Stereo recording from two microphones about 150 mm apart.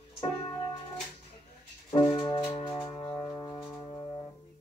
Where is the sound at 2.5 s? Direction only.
35° left (ahead or behind).